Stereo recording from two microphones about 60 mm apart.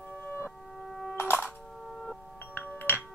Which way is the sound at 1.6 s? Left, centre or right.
Centre.